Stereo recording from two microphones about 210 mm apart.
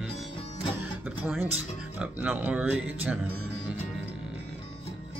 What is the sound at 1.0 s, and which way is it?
Speech, 10° right (ahead or behind).